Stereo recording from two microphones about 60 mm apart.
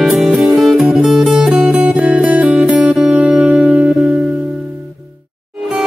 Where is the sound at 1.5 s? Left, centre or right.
Right.